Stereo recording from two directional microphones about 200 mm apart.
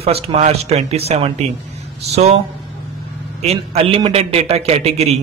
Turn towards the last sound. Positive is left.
turn(degrees=-30)  # may be behind; listen again after turning